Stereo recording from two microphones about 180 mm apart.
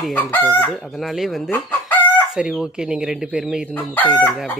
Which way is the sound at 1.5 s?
10° left (ahead or behind).